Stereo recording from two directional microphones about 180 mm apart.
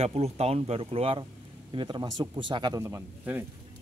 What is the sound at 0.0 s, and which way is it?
Speech, 35° right (ahead or behind).